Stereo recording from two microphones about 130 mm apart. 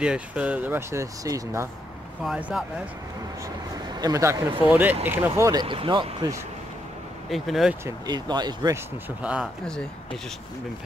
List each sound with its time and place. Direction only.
0.0 s speech: 10° right (ahead or behind); by 1.7 s 25° right (ahead or behind)
2.2 s speech: 5° right (ahead or behind)
3.9 s speech: 30° right (ahead or behind)
4.6 s speech: 15° right (ahead or behind)
5.6 s speech: 40° right (ahead or behind)
7.2 s speech: centre (ahead or behind)
8.1 s speech: 35° right (ahead or behind)
9.2 s speech: 10° right (ahead or behind)